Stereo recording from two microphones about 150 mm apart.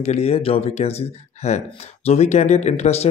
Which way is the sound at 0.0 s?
45° left (ahead or behind).